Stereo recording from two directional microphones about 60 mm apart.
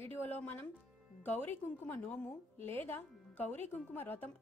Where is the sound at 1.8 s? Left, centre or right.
Left.